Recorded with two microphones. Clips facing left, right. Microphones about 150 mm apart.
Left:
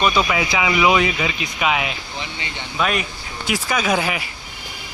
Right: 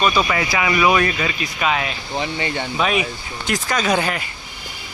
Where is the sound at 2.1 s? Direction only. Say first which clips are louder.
Right 8 dB; 50° right (ahead or behind).